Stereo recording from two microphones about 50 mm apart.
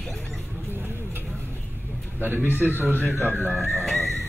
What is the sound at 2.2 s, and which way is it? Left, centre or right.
Speech, right.